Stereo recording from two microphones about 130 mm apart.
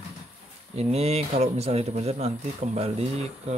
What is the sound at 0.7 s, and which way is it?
Speech, 55° right (ahead or behind).